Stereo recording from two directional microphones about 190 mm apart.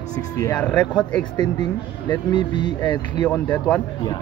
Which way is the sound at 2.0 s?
25° left (ahead or behind).